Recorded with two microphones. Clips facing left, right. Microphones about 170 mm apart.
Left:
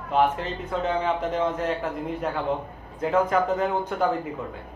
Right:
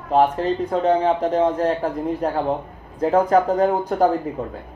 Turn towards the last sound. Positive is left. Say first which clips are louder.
# right 7 dB
turn(degrees=-35)  # may be behind; listen again after turning